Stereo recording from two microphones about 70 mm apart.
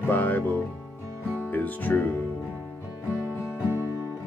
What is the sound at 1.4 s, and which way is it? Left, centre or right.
Speech, left.